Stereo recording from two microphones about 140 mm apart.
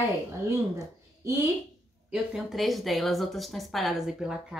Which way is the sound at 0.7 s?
20° right (ahead or behind).